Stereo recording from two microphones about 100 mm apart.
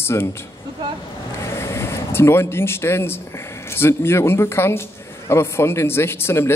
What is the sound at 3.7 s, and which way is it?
Speech, 25° left (ahead or behind).